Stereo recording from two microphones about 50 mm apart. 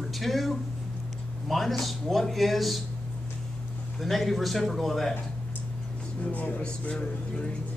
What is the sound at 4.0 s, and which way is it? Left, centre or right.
A man's voice, centre.